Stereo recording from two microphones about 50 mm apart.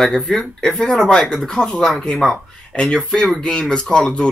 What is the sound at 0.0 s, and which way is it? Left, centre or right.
Speech, centre.